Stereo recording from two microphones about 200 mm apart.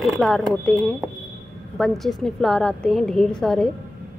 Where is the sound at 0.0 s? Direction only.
Centre (ahead or behind).